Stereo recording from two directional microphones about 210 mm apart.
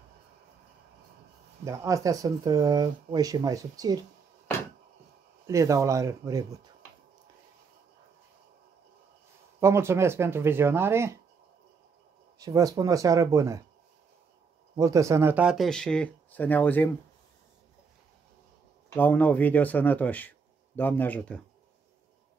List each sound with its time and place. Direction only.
1.6 s speech: 15° right (ahead or behind)
5.5 s speech: 15° right (ahead or behind)
9.6 s speech: 10° right (ahead or behind)
12.4 s speech: 15° right (ahead or behind)
14.8 s speech: 15° right (ahead or behind); by 16.9 s 10° left (ahead or behind)
18.9 s speech: 10° left (ahead or behind)